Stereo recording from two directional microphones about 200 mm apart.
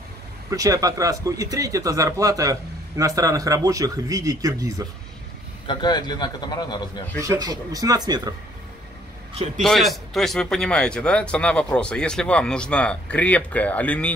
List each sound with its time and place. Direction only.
0.5 s speech: 15° right (ahead or behind)
5.7 s a man's voice: 20° left (ahead or behind)
7.2 s speech: 15° right (ahead or behind)
9.6 s a man's voice: centre (ahead or behind)